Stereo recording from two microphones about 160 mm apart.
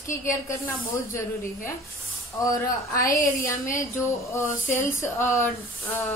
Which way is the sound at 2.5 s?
20° left (ahead or behind).